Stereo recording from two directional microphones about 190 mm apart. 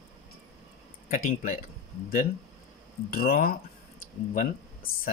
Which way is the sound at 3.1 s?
50° left (ahead or behind).